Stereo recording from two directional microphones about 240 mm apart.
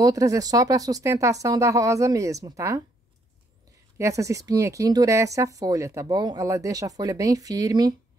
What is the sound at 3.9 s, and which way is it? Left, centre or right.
Speech, centre.